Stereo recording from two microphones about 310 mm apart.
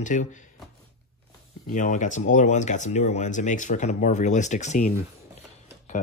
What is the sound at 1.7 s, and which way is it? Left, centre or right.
Speech, left.